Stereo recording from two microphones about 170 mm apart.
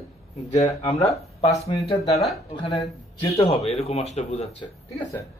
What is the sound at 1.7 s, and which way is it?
Speech, 20° left (ahead or behind).